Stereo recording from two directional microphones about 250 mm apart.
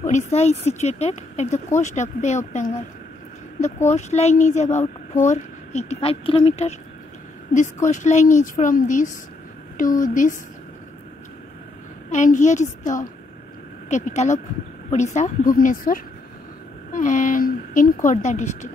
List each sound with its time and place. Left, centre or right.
0.0 s a child's voice: left
3.9 s a child's voice: left
12.1 s a child's voice: left